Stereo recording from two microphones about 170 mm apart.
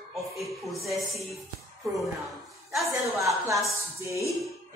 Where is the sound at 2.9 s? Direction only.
15° right (ahead or behind).